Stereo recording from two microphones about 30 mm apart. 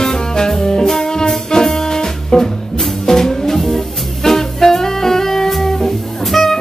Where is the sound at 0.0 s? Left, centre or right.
Centre.